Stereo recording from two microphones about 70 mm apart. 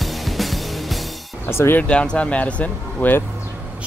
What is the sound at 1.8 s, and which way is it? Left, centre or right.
Speech, centre.